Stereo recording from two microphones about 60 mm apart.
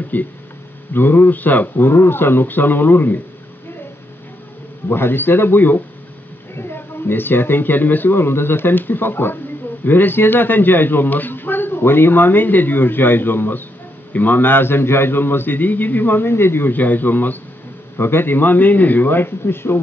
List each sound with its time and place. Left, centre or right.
0.1 s a man's voice: left
4.8 s a man's voice: left